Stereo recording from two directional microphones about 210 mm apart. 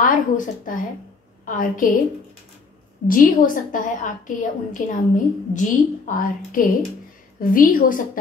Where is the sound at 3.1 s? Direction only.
40° left (ahead or behind).